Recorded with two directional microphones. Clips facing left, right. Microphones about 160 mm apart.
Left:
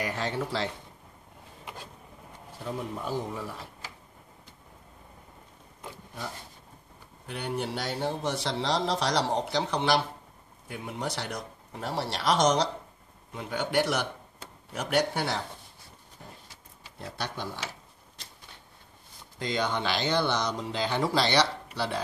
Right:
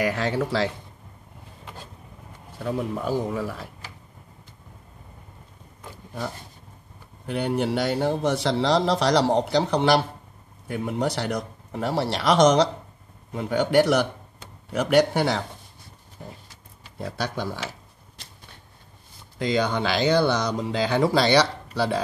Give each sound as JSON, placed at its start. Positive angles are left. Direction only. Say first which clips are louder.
{"t": 0.0, "sound": "speech", "louder": "right 7 dB", "side_deg": -75}
{"t": 2.6, "sound": "speech", "louder": "right 7 dB", "side_deg": -70}
{"t": 7.2, "sound": "speech", "louder": "right 8 dB", "side_deg": -75}
{"t": 13.3, "sound": "speech", "louder": "right 8 dB", "side_deg": -60}
{"t": 14.7, "sound": "speech", "louder": "right 8 dB", "side_deg": -90}
{"t": 17.0, "sound": "speech", "louder": "right 7 dB", "side_deg": -85}
{"t": 19.3, "sound": "speech", "louder": "right 6 dB", "side_deg": -70}